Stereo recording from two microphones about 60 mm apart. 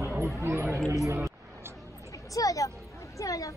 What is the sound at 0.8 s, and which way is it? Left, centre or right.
Speech, right.